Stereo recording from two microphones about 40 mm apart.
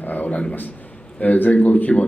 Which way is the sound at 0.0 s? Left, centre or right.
Left.